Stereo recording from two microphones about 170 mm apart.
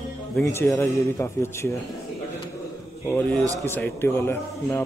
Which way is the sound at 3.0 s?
10° left (ahead or behind).